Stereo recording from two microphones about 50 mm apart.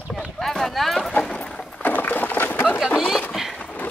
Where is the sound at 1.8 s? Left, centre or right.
Left.